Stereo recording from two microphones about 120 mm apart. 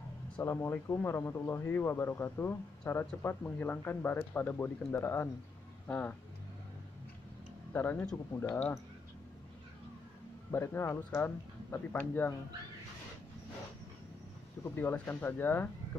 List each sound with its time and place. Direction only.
0.4 s speech: 20° left (ahead or behind)
7.7 s speech: 15° left (ahead or behind)
10.5 s speech: 20° left (ahead or behind)
14.6 s speech: 20° left (ahead or behind)